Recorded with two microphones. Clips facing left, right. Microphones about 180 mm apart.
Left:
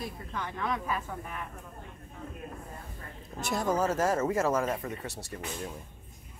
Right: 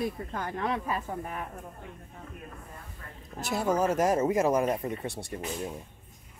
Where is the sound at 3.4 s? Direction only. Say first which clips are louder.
Right 2 dB; 5° right (ahead or behind).